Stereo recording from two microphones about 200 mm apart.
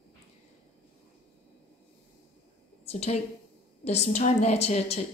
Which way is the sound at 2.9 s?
30° left (ahead or behind).